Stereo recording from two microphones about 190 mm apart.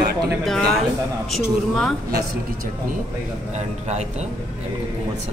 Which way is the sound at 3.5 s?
35° right (ahead or behind).